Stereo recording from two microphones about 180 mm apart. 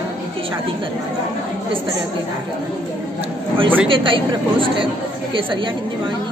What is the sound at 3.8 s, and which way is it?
A woman's voice, 30° right (ahead or behind).